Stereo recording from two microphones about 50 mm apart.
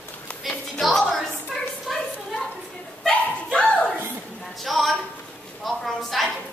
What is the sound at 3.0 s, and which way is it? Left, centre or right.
Bow-wow, centre.